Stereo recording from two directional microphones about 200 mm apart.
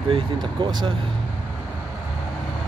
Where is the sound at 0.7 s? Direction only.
20° right (ahead or behind).